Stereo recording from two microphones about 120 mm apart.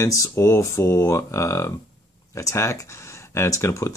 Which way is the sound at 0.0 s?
25° left (ahead or behind).